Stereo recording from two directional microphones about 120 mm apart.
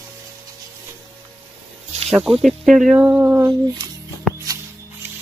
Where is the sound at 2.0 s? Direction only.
Centre (ahead or behind).